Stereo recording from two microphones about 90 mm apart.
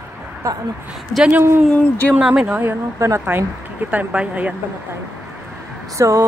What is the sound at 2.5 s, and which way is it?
Speech, 20° right (ahead or behind).